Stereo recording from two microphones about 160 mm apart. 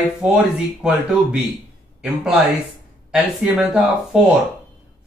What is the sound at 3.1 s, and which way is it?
Speech, 5° right (ahead or behind).